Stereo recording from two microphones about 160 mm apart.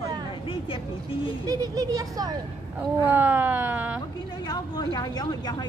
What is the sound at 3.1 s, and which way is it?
Speech, 10° right (ahead or behind).